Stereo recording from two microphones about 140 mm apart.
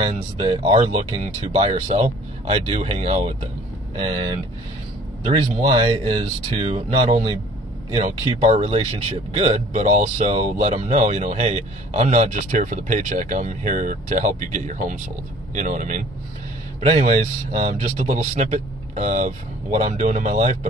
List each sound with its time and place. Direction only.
0.0 s speech: 45° right (ahead or behind)
9.7 s speech: 60° right (ahead or behind)